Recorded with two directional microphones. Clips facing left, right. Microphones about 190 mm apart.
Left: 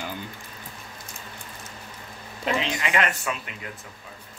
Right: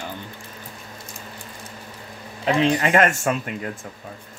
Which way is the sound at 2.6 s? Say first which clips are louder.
Right 8 dB; 45° right (ahead or behind).